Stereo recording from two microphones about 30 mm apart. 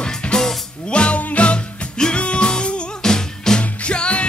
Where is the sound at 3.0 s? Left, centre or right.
Centre.